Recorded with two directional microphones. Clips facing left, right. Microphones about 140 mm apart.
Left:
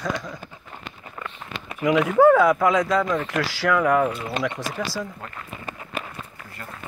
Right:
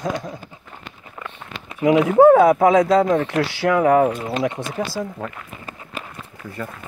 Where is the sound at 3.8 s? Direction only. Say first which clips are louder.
Right 7 dB; 45° right (ahead or behind).